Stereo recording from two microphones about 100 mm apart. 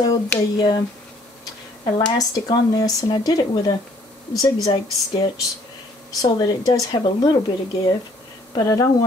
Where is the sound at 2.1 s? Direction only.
40° left (ahead or behind).